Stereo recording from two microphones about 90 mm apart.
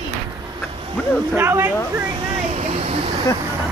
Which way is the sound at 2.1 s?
90° right.